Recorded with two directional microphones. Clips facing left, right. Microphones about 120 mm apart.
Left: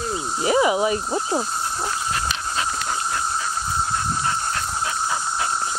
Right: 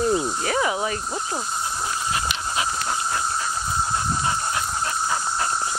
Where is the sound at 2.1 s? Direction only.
10° right (ahead or behind).